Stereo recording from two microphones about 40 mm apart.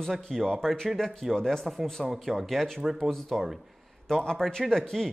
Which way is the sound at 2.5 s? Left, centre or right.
Centre.